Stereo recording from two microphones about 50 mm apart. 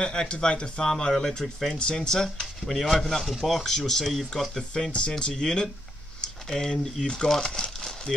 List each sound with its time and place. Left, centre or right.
0.0 s speech: centre
4.7 s speech: centre